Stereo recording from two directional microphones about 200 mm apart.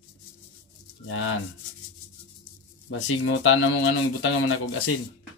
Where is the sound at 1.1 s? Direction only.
90° left.